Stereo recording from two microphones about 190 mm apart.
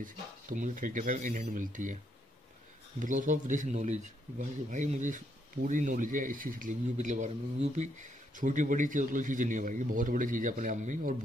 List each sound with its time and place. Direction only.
0.0 s speech: 45° right (ahead or behind)
3.0 s speech: 40° right (ahead or behind)